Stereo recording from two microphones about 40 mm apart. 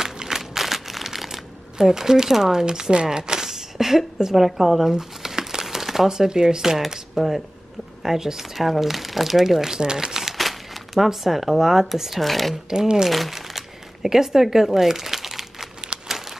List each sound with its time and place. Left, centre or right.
0.0 s crumpling: centre
2.6 s speech: centre
9.8 s speech: centre
10.3 s crumpling: centre
11.1 s speech: centre
12.6 s speech: centre
13.1 s crumpling: centre